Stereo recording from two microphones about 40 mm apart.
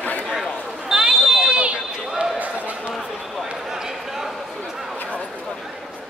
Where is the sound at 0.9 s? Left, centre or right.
Right.